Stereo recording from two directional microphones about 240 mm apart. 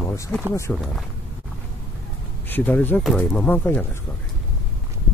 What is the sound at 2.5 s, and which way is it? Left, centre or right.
Speech, centre.